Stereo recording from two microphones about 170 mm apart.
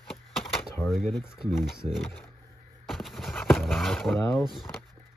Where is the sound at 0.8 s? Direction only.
Centre (ahead or behind).